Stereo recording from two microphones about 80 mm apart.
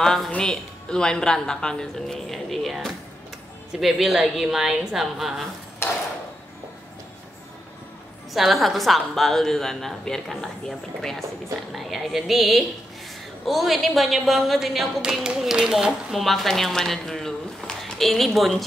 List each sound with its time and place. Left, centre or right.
0.0 s a woman's voice: centre
5.8 s a sound: left
8.3 s a woman's voice: centre